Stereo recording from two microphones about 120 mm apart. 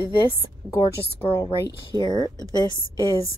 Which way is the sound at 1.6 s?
35° left (ahead or behind).